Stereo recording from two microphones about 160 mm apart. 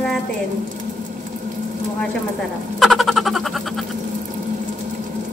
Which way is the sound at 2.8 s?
Centre (ahead or behind).